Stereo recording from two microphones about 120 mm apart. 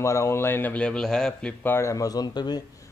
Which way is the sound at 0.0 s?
25° left (ahead or behind).